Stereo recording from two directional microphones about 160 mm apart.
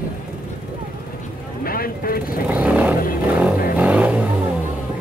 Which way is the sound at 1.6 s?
65° left (ahead or behind).